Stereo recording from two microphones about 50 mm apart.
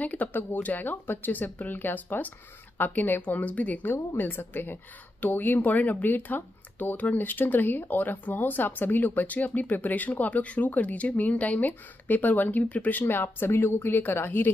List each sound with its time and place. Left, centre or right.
0.0 s speech: left
4.2 s a woman's voice: left
13.0 s a woman's voice: left